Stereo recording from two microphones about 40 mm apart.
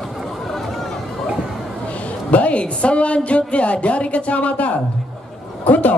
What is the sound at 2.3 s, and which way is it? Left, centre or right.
Speech, left.